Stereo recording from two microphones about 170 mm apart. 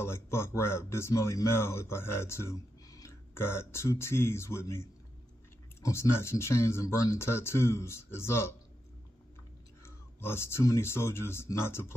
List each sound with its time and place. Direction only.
0.0 s speech: 15° left (ahead or behind)
9.8 s speech: 15° left (ahead or behind)